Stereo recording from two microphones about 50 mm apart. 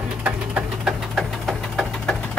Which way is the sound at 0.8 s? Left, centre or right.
Centre.